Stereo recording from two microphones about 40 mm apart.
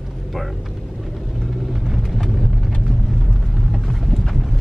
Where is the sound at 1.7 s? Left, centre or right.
Centre.